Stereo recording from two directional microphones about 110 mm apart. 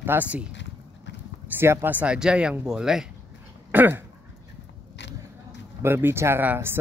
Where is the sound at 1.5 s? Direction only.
20° right (ahead or behind); by 3.1 s 5° right (ahead or behind).